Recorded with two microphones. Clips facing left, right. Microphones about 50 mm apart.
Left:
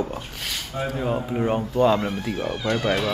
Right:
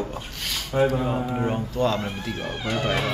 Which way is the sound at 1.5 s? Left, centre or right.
Centre.